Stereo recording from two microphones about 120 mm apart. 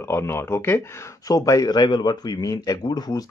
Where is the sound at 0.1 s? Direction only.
20° left (ahead or behind).